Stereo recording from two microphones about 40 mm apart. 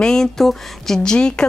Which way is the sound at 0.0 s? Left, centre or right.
Centre.